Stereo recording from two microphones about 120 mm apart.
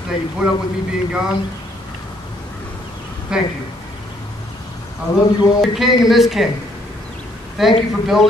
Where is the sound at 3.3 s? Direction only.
5° right (ahead or behind).